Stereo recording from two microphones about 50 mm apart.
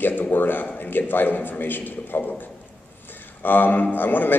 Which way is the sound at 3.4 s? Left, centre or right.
Left.